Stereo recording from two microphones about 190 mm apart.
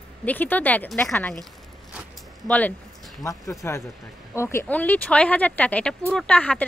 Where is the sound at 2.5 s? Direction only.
10° left (ahead or behind).